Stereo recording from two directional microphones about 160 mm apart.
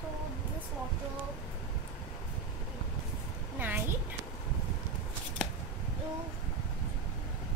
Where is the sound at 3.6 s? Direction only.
10° right (ahead or behind).